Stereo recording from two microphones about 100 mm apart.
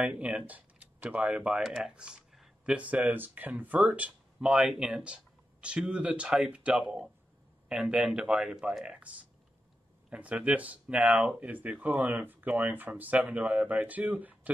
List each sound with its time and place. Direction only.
0.0 s speech: 15° right (ahead or behind)